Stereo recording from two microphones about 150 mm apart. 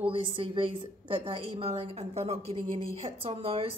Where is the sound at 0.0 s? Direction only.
35° right (ahead or behind).